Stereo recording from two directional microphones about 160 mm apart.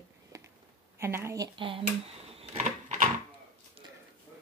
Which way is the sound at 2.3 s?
45° right (ahead or behind).